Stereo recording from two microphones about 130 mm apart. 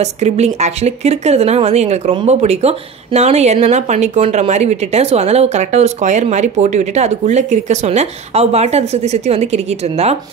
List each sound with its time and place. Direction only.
0.0 s speech: 60° right (ahead or behind)